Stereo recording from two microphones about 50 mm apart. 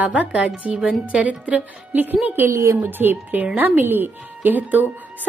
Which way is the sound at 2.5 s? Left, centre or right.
Right.